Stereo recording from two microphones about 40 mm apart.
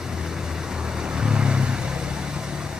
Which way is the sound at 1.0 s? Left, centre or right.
Centre.